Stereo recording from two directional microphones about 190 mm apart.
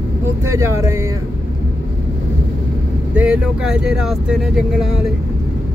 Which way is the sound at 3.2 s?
5° right (ahead or behind).